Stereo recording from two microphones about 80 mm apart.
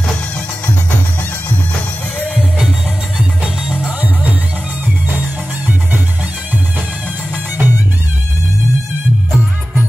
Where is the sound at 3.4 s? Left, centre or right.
Centre.